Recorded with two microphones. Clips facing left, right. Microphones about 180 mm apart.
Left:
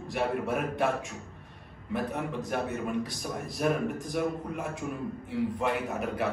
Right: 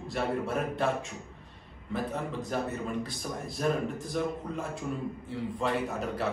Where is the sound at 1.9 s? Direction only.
15° left (ahead or behind).